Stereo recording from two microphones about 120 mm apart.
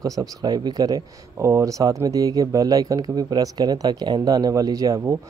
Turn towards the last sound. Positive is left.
turn(degrees=-30)  # may be behind; listen again after turning